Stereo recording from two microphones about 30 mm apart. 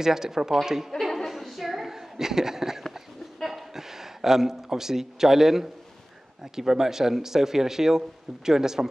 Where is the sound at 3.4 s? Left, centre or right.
Centre.